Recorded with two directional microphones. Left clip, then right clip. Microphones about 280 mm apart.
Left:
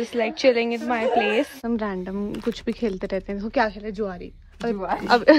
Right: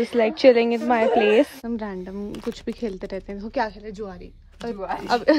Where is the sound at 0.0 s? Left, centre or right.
Centre.